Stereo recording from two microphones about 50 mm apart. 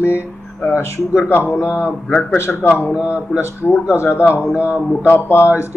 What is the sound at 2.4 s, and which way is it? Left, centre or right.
Speech, left.